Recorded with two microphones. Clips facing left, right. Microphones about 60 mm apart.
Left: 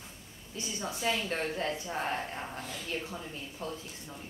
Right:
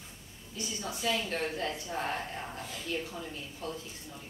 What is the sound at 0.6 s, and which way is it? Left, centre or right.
Speech, left.